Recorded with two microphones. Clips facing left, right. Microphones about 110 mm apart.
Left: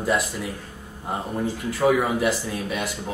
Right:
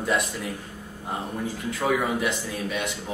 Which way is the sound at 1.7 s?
5° left (ahead or behind).